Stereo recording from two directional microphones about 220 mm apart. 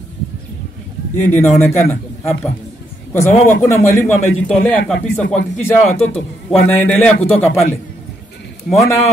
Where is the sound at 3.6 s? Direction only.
10° left (ahead or behind).